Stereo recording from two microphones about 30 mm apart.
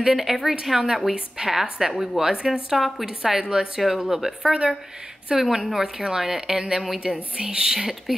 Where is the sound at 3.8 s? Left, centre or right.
Centre.